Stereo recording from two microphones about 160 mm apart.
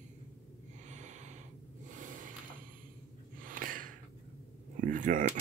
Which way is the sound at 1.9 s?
55° right (ahead or behind).